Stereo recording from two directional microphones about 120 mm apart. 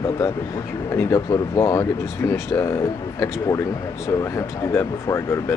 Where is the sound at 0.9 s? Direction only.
25° left (ahead or behind).